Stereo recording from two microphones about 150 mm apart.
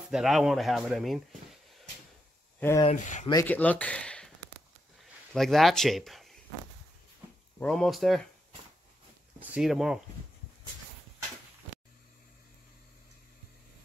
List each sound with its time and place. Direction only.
0.1 s speech: centre (ahead or behind)
2.6 s speech: 10° left (ahead or behind)
3.0 s speech: 55° left (ahead or behind)
3.4 s speech: 10° left (ahead or behind)
5.3 s speech: centre (ahead or behind)
7.6 s speech: centre (ahead or behind)
9.4 s speech: 5° right (ahead or behind)